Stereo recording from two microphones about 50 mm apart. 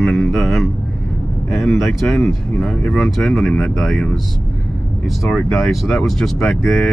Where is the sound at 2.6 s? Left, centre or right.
Left.